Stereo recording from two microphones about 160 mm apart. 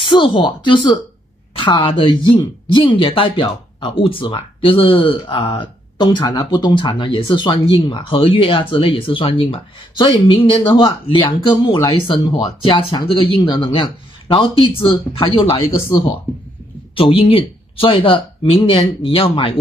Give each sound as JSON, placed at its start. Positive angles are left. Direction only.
{"t": 0.0, "sound": "speech", "side_deg": 30}
{"t": 16.9, "sound": "speech", "side_deg": 35}